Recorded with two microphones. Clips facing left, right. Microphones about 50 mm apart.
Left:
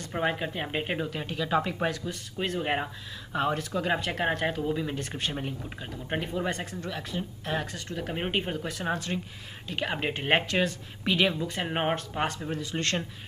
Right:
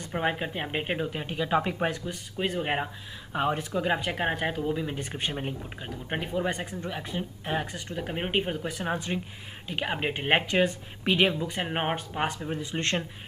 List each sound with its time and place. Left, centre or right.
0.1 s speech: centre
2.3 s speech: centre
12.4 s speech: centre